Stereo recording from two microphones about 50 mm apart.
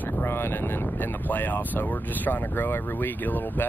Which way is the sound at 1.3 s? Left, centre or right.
Left.